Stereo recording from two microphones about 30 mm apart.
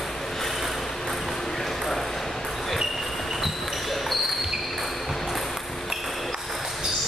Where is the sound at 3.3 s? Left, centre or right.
Centre.